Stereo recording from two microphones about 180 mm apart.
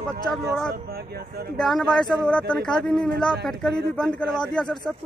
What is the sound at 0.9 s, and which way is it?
Speech, 60° right (ahead or behind).